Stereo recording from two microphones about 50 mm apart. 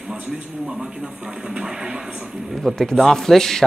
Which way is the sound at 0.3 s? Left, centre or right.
Centre.